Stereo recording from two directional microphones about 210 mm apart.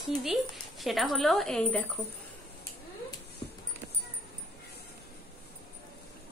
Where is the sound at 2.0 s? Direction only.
15° left (ahead or behind).